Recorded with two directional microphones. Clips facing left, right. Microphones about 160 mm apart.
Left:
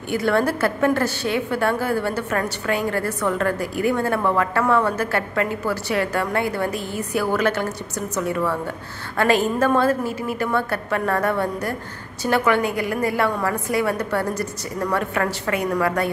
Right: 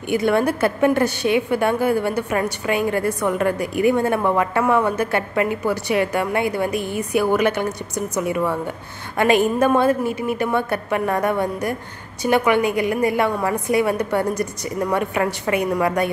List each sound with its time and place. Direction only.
0.1 s a woman's voice: 15° right (ahead or behind)